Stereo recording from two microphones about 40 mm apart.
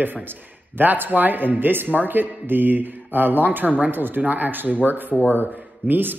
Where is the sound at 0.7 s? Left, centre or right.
Right.